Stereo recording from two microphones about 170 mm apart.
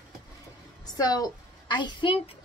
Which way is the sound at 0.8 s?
20° left (ahead or behind).